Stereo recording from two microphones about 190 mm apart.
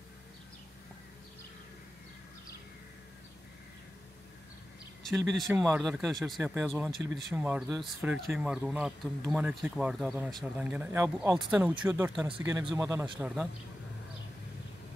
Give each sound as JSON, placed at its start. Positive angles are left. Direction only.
{"t": 5.7, "sound": "speech", "side_deg": -5}